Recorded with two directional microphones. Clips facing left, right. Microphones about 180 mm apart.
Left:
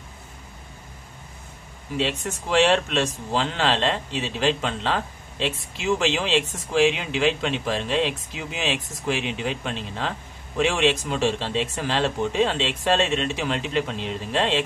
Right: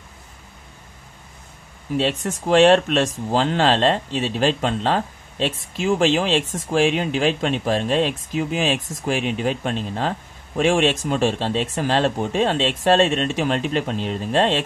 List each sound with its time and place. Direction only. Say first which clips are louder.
2.0 s speech: right 4 dB; 50° right (ahead or behind)